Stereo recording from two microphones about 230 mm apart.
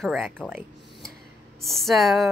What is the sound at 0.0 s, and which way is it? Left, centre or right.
A woman's voice, centre.